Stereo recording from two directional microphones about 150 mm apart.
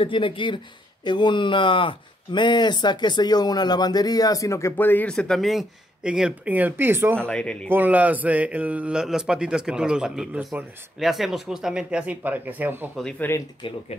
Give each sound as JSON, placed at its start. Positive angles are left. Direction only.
{"t": 0.0, "sound": "speech", "side_deg": 35}
{"t": 7.2, "sound": "speech", "side_deg": 5}
{"t": 7.7, "sound": "a man's voice", "side_deg": -10}
{"t": 12.9, "sound": "speech", "side_deg": 5}
{"t": 13.6, "sound": "speech", "side_deg": 35}